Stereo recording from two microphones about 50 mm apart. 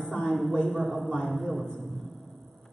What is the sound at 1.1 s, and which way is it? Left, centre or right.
Speech, centre.